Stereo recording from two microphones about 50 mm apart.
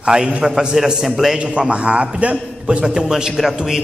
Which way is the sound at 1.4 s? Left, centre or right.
Right.